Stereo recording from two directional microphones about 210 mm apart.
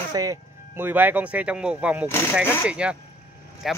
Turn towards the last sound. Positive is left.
turn(degrees=0)  # may be behind; listen again after turning